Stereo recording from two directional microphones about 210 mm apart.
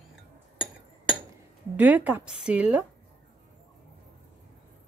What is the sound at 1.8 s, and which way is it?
Speech, 5° right (ahead or behind).